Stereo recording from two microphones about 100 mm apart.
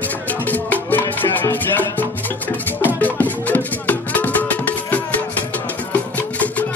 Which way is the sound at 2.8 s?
15° left (ahead or behind).